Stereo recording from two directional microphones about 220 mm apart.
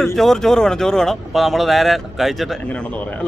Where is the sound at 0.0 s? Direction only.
Centre (ahead or behind).